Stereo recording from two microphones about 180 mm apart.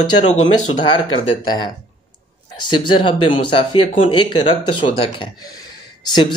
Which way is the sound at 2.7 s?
30° left (ahead or behind).